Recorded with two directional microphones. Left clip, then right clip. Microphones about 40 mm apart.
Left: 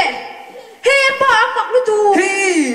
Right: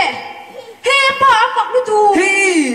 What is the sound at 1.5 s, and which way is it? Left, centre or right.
Speech, left.